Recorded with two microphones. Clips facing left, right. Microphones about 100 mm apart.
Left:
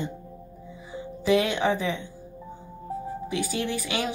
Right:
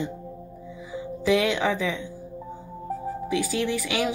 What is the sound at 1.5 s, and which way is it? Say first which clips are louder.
Speech: even; 30° left (ahead or behind).